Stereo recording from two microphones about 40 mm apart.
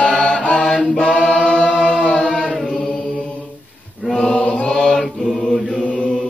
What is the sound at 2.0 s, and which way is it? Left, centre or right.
Chant, left.